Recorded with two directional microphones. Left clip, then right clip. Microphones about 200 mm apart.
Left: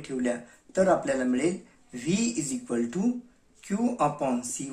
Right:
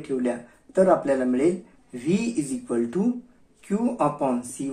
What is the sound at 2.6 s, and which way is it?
Speech, 25° left (ahead or behind).